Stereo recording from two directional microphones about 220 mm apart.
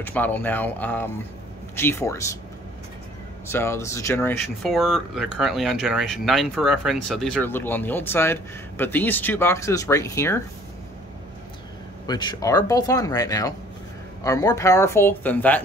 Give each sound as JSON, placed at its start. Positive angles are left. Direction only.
{"t": 0.0, "sound": "speech", "side_deg": 10}
{"t": 3.4, "sound": "speech", "side_deg": 10}
{"t": 12.1, "sound": "speech", "side_deg": 20}